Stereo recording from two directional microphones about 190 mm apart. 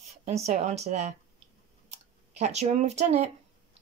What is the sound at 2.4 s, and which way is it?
Speech, 35° right (ahead or behind).